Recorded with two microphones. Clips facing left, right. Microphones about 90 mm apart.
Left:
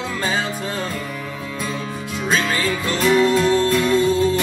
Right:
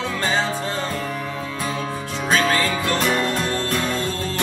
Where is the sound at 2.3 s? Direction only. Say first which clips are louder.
Right 2 dB; 5° left (ahead or behind).